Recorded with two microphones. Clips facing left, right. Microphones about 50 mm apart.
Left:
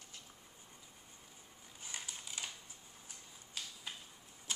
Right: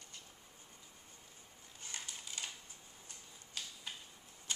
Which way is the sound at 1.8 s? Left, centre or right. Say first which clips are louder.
Even; centre.